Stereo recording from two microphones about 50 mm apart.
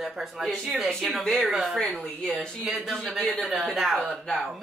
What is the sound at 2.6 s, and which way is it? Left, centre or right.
Speech, centre.